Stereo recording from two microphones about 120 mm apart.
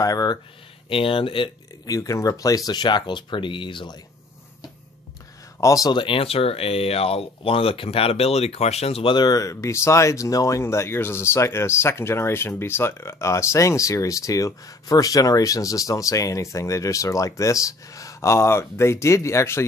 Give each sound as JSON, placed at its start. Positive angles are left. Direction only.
{"t": 0.0, "sound": "speech", "side_deg": 30}
{"t": 0.8, "sound": "speech", "side_deg": 50}
{"t": 1.9, "sound": "speech", "side_deg": 25}
{"t": 5.6, "sound": "speech", "side_deg": 30}
{"t": 5.9, "sound": "speech", "side_deg": 45}
{"t": 9.1, "sound": "speech", "side_deg": 30}